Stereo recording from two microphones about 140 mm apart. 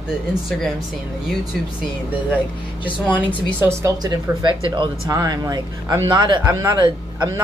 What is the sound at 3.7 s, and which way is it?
A woman's voice, 25° right (ahead or behind).